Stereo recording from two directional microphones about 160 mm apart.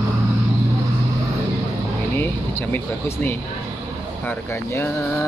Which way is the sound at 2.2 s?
10° left (ahead or behind).